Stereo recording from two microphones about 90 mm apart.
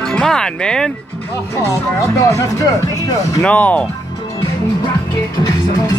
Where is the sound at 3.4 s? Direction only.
15° left (ahead or behind).